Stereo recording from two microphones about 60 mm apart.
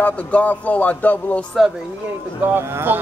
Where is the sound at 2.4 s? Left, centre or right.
Right.